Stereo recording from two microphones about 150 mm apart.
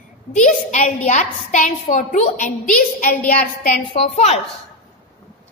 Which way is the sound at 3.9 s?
40° left (ahead or behind).